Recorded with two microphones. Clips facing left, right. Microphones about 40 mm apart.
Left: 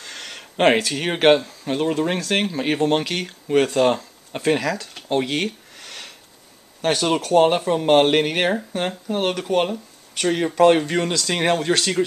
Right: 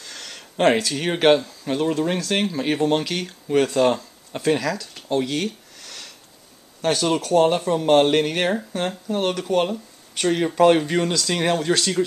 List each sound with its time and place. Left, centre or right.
0.0 s speech: left
5.1 s a sound: left
6.8 s speech: centre
10.2 s speech: centre